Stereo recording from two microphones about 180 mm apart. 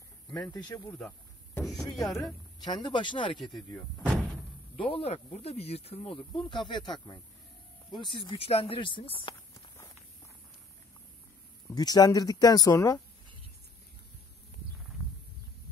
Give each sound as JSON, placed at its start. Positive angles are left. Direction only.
{"t": 0.3, "sound": "speech", "side_deg": 25}
{"t": 0.9, "sound": "cricket", "side_deg": 5}
{"t": 1.6, "sound": "speech", "side_deg": 20}
{"t": 3.7, "sound": "speech", "side_deg": 5}
{"t": 4.7, "sound": "speech", "side_deg": 30}
{"t": 11.7, "sound": "speech", "side_deg": 20}